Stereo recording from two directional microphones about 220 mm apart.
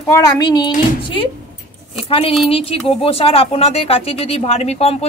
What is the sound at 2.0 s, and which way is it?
Speech, 25° left (ahead or behind).